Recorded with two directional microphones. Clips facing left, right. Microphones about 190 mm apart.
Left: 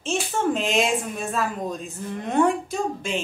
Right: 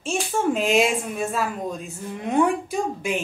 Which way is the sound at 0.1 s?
5° right (ahead or behind).